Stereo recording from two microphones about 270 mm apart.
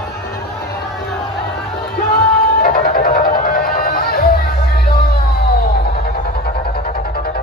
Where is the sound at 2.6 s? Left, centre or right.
Left.